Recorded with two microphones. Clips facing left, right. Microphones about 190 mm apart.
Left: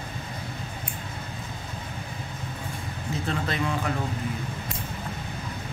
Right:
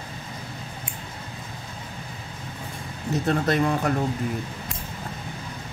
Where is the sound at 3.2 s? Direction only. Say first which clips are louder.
Right 7 dB; 40° right (ahead or behind).